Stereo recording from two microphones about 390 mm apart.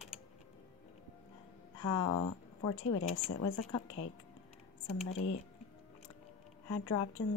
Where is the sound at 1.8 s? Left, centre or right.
Left.